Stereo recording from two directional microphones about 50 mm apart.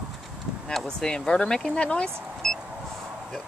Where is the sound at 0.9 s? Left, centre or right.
Centre.